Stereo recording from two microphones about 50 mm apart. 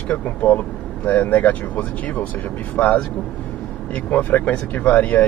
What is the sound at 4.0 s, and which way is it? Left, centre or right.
Speech, left.